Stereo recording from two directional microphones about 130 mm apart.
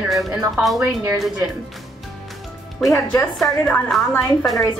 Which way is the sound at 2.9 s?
25° left (ahead or behind).